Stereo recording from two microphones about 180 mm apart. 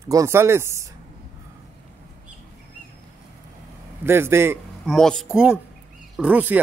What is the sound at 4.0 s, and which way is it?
Speech, 15° right (ahead or behind).